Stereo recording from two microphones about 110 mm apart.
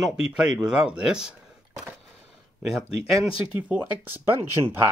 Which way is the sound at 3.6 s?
15° right (ahead or behind).